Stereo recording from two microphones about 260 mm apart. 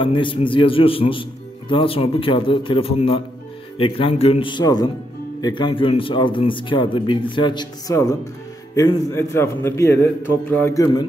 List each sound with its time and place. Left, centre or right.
0.0 s a man's voice: centre